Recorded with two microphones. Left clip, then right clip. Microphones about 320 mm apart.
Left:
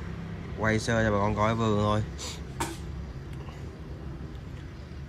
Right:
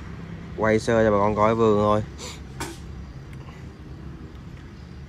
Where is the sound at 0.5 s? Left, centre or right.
Centre.